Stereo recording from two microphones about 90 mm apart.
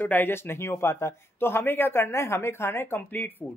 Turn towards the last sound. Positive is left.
turn(degrees=25)  # may be behind; listen again after turning